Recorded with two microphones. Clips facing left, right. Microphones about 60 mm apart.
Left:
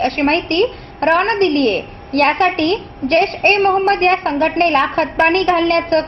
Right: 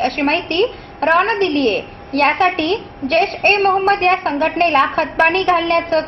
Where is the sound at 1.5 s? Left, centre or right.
Left.